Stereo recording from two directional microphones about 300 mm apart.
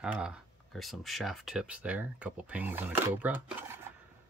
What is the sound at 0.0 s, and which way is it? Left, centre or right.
Speech, centre.